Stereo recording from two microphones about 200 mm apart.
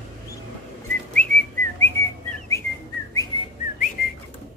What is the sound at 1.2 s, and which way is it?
Whistling, 5° left (ahead or behind).